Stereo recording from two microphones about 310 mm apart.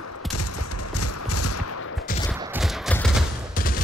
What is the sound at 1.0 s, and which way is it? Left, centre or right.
Clip-clop, left.